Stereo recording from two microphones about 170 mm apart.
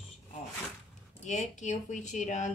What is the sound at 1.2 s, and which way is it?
Speech, 45° left (ahead or behind).